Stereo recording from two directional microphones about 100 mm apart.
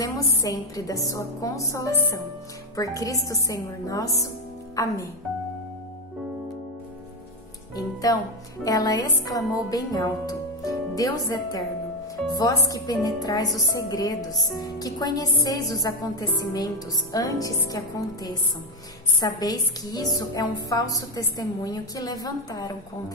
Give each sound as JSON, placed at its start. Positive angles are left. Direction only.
{"t": 0.0, "sound": "a woman's voice", "side_deg": 35}
{"t": 7.7, "sound": "a woman's voice", "side_deg": 35}